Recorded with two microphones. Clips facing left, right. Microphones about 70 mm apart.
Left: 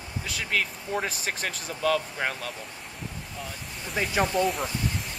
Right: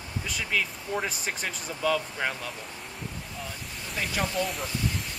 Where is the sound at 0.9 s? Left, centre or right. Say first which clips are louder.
Left 1 dB; centre.